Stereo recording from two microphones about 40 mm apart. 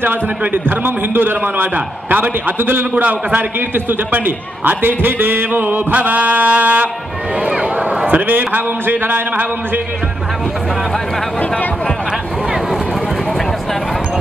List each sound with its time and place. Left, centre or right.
0.0 s a man's voice: right
4.6 s a man's voice: right
8.1 s a man's voice: right